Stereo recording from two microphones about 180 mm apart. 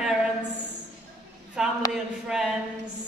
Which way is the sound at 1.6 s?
5° right (ahead or behind).